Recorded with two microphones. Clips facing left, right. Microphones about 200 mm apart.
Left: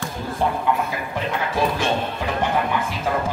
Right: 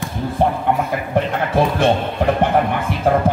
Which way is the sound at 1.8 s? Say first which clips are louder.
Right 7 dB; 60° right (ahead or behind).